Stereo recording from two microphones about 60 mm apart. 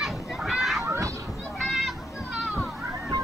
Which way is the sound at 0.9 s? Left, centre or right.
Right.